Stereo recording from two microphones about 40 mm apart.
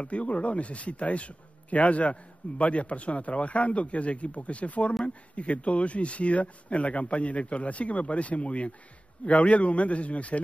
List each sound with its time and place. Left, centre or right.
0.0 s a man's voice: left